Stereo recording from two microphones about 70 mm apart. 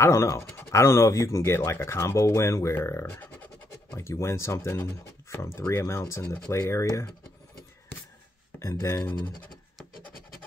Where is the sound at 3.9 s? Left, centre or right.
Left.